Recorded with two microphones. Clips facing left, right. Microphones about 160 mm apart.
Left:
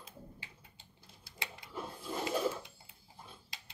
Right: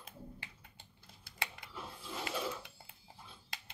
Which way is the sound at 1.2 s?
55° right (ahead or behind).